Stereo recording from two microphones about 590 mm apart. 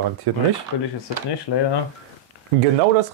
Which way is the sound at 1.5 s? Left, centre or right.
Left.